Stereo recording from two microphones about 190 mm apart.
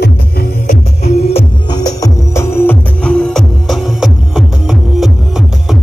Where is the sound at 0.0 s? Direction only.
55° left (ahead or behind).